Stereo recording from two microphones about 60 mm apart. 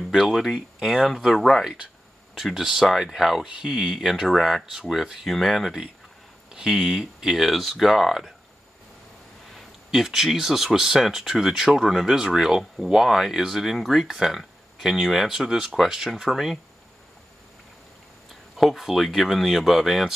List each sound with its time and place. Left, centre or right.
0.1 s speech: centre
3.4 s speech: centre
9.5 s speech: centre
18.6 s speech: centre